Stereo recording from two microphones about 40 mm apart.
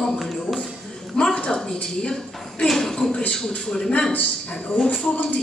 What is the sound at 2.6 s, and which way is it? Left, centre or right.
A woman's voice, centre.